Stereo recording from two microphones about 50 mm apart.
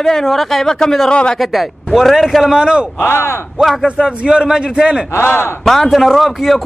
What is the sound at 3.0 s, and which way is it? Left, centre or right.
Speech, left.